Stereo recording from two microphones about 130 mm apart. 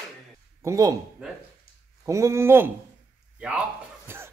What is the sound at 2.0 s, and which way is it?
Speech, 20° right (ahead or behind).